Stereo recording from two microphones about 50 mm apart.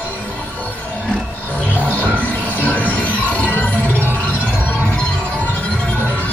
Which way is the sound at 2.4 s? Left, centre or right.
Left.